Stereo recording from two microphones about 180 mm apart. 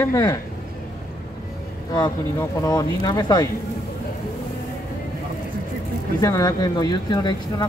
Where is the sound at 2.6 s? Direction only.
20° left (ahead or behind).